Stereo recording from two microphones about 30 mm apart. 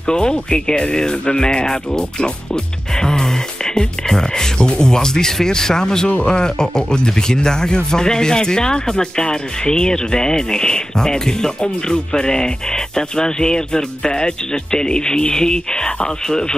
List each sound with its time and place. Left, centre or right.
0.0 s speech: left
1.9 s music: left
4.1 s speech: centre
4.6 s speech: left
6.0 s speech: left
6.3 s speech: left